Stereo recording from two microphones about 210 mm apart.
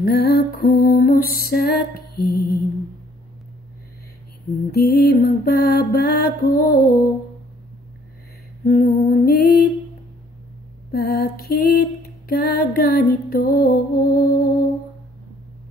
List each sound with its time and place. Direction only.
0.0 s lullaby: 45° left (ahead or behind)
2.1 s mantra: 45° left (ahead or behind)
4.6 s mantra: 45° left (ahead or behind)
8.6 s mantra: 45° left (ahead or behind)
10.9 s mantra: 45° left (ahead or behind)